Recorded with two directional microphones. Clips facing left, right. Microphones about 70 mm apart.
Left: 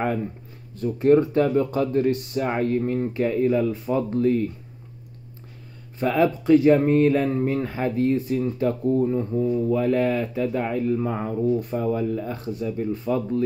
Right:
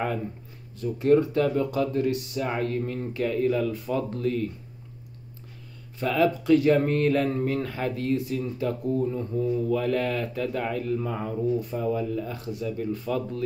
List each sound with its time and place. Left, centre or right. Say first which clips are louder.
0.7 s speech: left 3 dB; left
3.1 s speech: left 1 dB; left
5.9 s speech: left 3 dB; left
9.4 s speech: left 2 dB; left